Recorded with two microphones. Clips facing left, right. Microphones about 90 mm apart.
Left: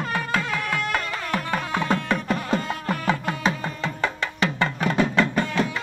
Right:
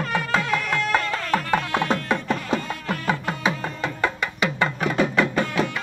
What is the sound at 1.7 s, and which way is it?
Music, 10° right (ahead or behind).